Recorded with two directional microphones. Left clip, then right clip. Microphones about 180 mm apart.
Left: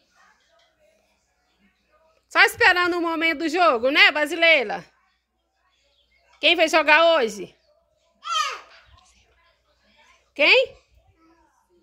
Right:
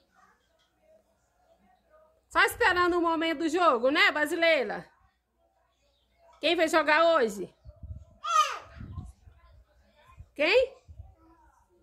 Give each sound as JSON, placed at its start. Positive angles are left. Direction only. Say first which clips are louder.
{"t": 2.3, "sound": "a woman's voice", "louder": "left 7 dB", "side_deg": 15}
{"t": 6.4, "sound": "a woman's voice", "louder": "left 7 dB", "side_deg": 5}
{"t": 10.3, "sound": "a woman's voice", "louder": "left 7 dB", "side_deg": 5}